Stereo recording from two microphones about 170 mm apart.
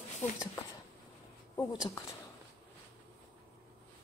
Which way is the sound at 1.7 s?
20° left (ahead or behind).